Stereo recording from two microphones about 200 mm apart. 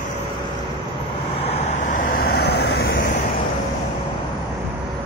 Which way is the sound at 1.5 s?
35° left (ahead or behind).